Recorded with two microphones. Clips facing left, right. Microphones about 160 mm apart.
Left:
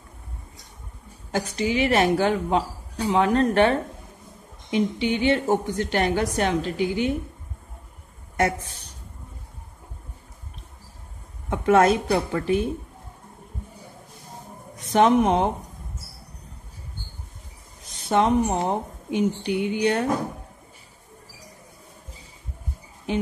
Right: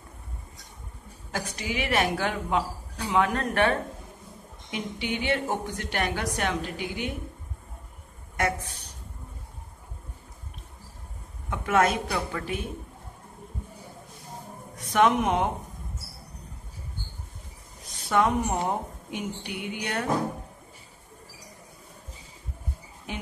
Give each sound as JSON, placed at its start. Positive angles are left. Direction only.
{"t": 1.3, "sound": "speech", "side_deg": 30}
{"t": 11.5, "sound": "speech", "side_deg": 35}
{"t": 14.9, "sound": "speech", "side_deg": 30}
{"t": 18.0, "sound": "speech", "side_deg": 25}
{"t": 23.1, "sound": "speech", "side_deg": 30}